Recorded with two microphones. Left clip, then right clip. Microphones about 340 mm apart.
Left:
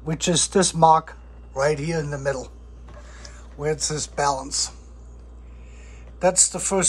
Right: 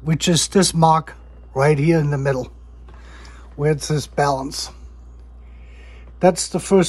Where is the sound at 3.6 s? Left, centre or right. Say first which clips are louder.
Right 5 dB; right.